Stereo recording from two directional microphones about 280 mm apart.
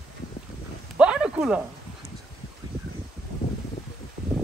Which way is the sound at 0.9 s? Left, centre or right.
Centre.